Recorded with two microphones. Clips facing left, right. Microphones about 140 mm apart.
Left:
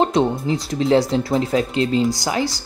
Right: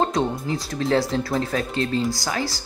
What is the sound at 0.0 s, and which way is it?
Speech, 25° left (ahead or behind).